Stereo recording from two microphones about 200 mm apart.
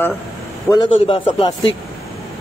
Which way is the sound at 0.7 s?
25° left (ahead or behind).